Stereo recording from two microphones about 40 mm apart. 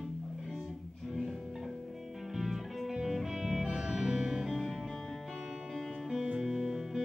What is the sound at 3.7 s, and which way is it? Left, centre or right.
Music, centre.